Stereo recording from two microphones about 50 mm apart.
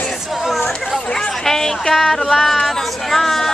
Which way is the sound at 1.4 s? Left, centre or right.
Centre.